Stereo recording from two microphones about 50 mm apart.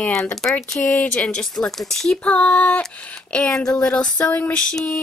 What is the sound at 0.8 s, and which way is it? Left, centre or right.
Speech, left.